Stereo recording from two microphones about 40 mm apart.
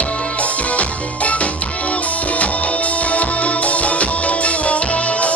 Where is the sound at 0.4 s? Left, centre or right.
Left.